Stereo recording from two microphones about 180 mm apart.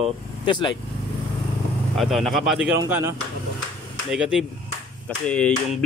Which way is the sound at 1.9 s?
Centre (ahead or behind).